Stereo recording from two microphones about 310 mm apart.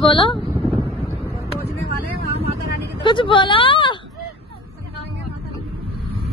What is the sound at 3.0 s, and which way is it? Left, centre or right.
Speech, centre.